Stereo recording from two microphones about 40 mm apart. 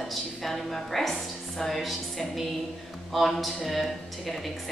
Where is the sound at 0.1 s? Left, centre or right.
Centre.